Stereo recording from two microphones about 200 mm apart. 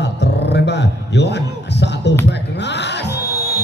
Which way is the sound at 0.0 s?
60° left (ahead or behind).